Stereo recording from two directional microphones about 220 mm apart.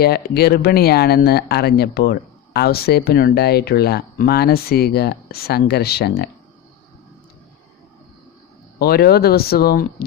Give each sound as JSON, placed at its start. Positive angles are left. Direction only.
{"t": 0.0, "sound": "speech", "side_deg": 45}
{"t": 8.7, "sound": "speech", "side_deg": 45}